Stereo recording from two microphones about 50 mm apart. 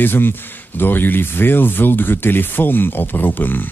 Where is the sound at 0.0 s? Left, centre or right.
Left.